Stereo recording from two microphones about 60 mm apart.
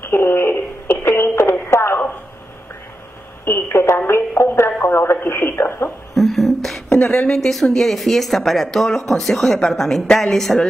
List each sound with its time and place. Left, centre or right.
0.0 s radio: left
3.4 s radio: left
4.4 s a sound: left
4.8 s speech: left
5.9 s a sound: centre
7.1 s a woman's voice: centre
7.3 s speech: centre